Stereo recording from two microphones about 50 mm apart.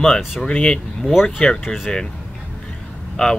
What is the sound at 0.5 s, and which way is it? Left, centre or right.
Speech, left.